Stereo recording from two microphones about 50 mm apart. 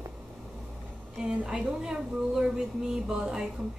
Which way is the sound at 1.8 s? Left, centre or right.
Centre.